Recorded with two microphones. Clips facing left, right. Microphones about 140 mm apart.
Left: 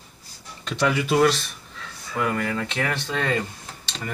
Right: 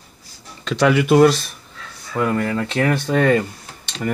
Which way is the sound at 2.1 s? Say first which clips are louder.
Right 5 dB; 35° right (ahead or behind).